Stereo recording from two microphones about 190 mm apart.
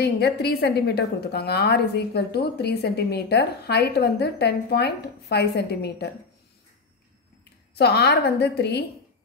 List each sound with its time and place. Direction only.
0.0 s a woman's voice: 60° left (ahead or behind)
7.7 s a woman's voice: 60° left (ahead or behind)